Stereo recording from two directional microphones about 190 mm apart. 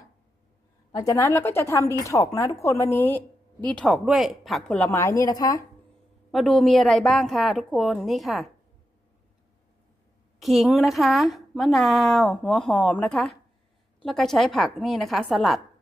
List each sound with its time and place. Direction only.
0.9 s a woman's voice: 20° left (ahead or behind)
6.3 s a woman's voice: centre (ahead or behind)
10.4 s a woman's voice: centre (ahead or behind)